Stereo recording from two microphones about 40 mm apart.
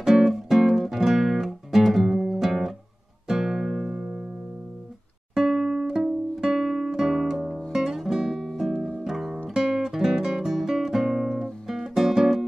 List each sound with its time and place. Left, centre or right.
0.0 s music: centre
3.3 s guitar: centre
3.9 s music: centre
5.3 s music: centre